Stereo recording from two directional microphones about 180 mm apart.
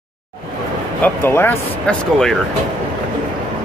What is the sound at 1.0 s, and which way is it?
Speech, 10° left (ahead or behind).